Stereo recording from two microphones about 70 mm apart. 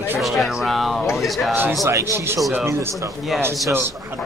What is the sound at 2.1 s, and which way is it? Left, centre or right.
Speech, right.